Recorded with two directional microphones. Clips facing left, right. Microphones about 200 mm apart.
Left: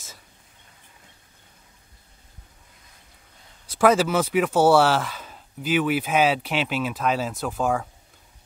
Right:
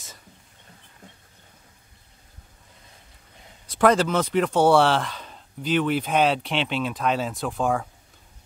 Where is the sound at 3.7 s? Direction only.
5° left (ahead or behind).